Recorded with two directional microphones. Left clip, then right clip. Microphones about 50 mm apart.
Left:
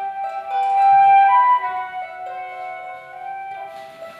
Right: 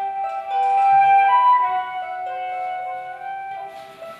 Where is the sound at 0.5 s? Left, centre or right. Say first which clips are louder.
Left 2 dB; left.